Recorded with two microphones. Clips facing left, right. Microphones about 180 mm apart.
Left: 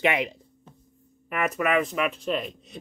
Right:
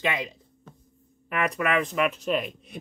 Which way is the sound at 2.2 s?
5° right (ahead or behind).